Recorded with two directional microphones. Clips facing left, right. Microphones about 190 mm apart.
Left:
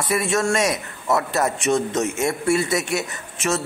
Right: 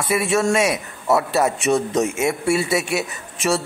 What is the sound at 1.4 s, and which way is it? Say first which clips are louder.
A man's voice: right 2 dB; 10° right (ahead or behind).